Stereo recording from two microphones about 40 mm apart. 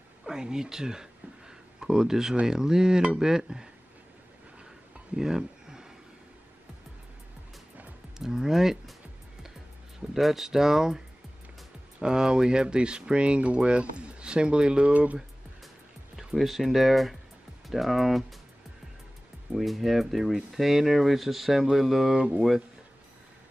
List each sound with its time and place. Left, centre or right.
0.2 s speech: centre
5.1 s a sound: centre
8.2 s speech: centre
9.9 s speech: centre
12.0 s speech: centre
16.3 s speech: centre
19.5 s speech: centre
22.1 s speech: right